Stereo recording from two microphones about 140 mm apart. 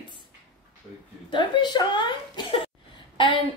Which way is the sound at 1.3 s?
35° left (ahead or behind).